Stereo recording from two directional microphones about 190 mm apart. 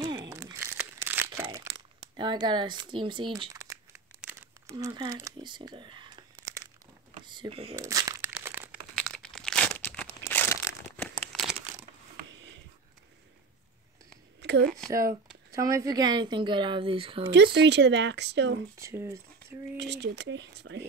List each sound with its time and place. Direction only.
0.0 s crumpling: 20° right (ahead or behind)
2.1 s speech: 25° right (ahead or behind)
7.2 s computer keyboard: 25° right (ahead or behind)
7.7 s crumpling: 20° right (ahead or behind)
8.9 s crumpling: 5° left (ahead or behind)
14.6 s speech: centre (ahead or behind)
14.9 s a woman's voice: 15° right (ahead or behind)
17.3 s speech: 65° right (ahead or behind)
18.8 s speech: 15° right (ahead or behind)
19.8 s speech: 65° right (ahead or behind)